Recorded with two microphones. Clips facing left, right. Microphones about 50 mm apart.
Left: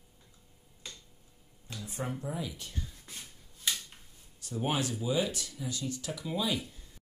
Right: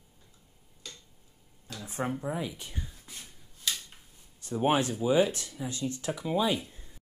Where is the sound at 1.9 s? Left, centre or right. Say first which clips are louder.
Right 5 dB; right.